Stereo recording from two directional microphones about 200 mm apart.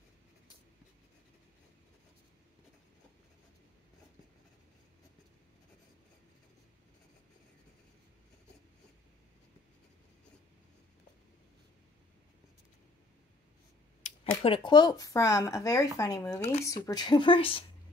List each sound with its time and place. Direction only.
14.0 s speech: 30° left (ahead or behind)